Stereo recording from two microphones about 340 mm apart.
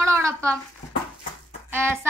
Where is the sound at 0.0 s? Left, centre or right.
Centre.